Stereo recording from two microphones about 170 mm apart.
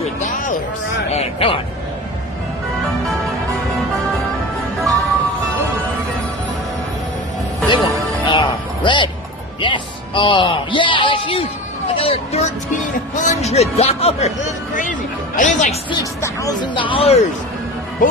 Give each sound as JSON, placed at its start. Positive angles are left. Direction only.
{"t": 0.0, "sound": "music", "side_deg": 50}
{"t": 1.1, "sound": "speech", "side_deg": 35}
{"t": 7.6, "sound": "music", "side_deg": 25}
{"t": 11.9, "sound": "speech", "side_deg": 35}
{"t": 15.9, "sound": "speech", "side_deg": 20}